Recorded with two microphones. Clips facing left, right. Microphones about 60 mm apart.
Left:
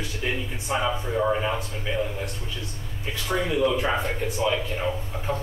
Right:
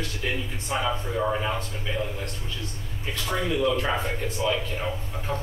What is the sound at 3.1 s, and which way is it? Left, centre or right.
Speech, centre.